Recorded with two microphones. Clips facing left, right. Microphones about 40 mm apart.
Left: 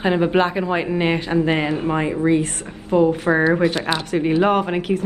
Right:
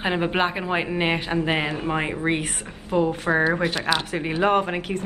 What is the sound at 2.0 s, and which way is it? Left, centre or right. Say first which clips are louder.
Speech: left 6 dB; right.